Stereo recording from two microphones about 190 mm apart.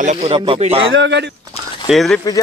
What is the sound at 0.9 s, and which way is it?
Speech, 70° right (ahead or behind).